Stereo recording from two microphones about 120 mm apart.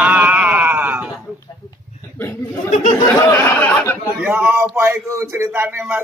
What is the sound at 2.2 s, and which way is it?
Speech, 15° left (ahead or behind).